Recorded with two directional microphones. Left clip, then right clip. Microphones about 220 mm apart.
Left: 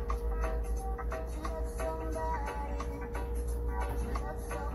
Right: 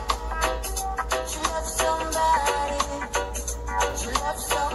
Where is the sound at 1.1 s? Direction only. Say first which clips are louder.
Right 13 dB; 40° right (ahead or behind).